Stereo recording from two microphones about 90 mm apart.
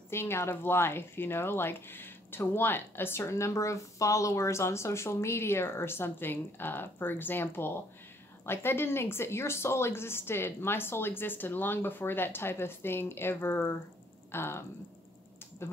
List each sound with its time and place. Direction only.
0.1 s speech: 30° left (ahead or behind)